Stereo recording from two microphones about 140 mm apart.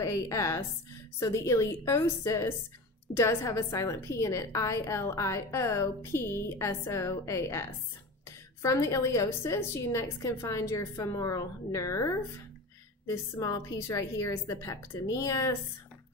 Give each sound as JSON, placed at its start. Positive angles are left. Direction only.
{"t": 0.0, "sound": "a woman's voice", "side_deg": 25}
{"t": 8.6, "sound": "a woman's voice", "side_deg": 20}